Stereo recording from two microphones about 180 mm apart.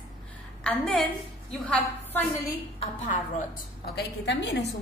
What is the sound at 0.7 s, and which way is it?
A woman's voice, centre (ahead or behind).